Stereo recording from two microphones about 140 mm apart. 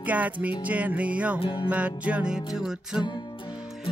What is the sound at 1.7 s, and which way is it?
Music, 10° right (ahead or behind).